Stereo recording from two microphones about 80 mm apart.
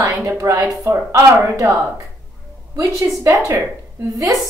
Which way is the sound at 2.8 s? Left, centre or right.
Right.